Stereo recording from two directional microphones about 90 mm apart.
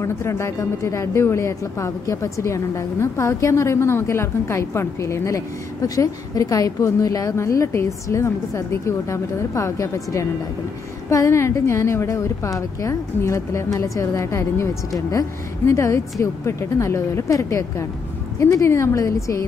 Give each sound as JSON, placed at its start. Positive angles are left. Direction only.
{"t": 0.0, "sound": "a woman's voice", "side_deg": 30}